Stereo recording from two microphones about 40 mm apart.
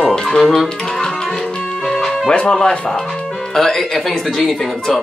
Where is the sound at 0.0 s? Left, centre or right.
Centre.